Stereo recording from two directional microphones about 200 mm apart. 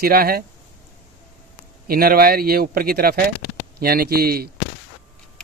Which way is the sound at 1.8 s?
50° right (ahead or behind).